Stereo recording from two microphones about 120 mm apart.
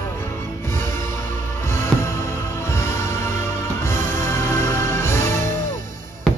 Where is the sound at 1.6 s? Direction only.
20° left (ahead or behind).